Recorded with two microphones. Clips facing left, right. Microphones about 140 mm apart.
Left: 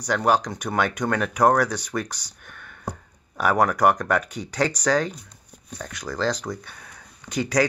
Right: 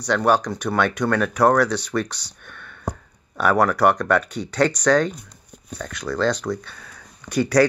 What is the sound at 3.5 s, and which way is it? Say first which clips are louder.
Speech: right 1 dB; 15° left (ahead or behind).